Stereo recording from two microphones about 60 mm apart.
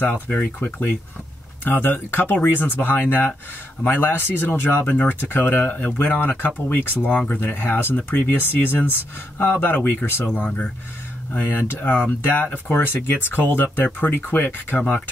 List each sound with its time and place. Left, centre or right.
0.0 s speech: left